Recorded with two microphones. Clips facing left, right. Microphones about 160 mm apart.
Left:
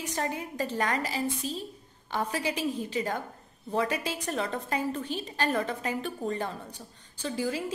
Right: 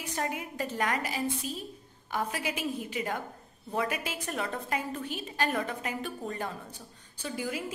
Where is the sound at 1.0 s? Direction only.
35° left (ahead or behind).